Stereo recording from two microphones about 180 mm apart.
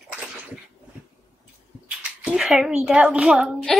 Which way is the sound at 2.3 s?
Centre (ahead or behind).